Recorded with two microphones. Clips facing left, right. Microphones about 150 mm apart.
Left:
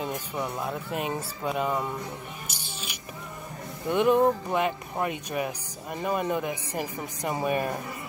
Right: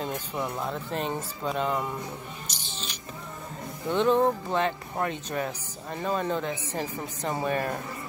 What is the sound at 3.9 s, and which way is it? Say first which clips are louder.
Speech: left 1 dB; 15° left (ahead or behind).